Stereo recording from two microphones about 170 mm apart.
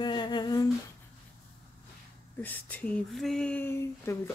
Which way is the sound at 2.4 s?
10° left (ahead or behind).